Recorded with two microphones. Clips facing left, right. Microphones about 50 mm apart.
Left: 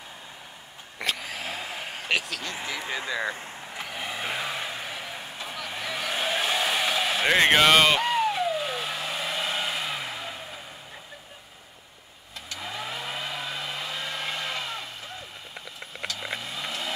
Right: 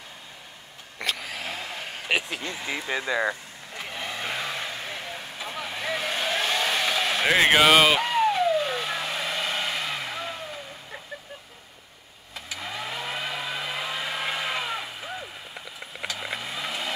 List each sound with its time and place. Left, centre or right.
0.9 s a sound: centre
2.0 s speech: centre
3.7 s vehicle: centre
12.4 s vehicle: centre